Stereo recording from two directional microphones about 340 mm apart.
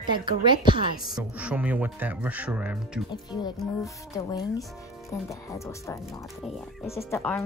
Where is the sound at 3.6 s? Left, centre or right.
Centre.